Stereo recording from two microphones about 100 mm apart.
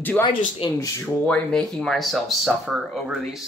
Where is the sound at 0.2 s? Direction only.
55° left (ahead or behind).